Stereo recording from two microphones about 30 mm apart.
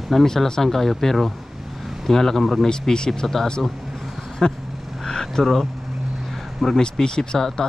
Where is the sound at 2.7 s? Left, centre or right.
Left.